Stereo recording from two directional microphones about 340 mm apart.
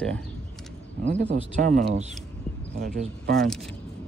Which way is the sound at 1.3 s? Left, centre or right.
Right.